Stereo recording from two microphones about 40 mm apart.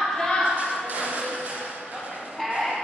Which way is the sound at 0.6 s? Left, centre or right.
Right.